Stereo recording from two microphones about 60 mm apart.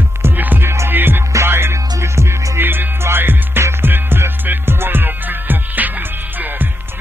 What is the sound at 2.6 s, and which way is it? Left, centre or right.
Music, right.